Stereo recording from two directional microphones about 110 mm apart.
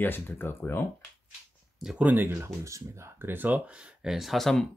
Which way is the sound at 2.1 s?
20° right (ahead or behind).